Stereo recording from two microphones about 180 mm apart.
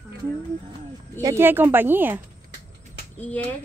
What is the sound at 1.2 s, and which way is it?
A woman's voice, 15° right (ahead or behind).